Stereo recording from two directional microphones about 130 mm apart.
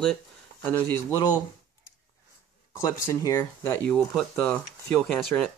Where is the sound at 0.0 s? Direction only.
10° left (ahead or behind).